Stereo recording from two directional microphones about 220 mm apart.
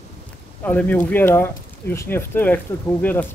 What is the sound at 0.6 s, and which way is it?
Speech, 5° left (ahead or behind).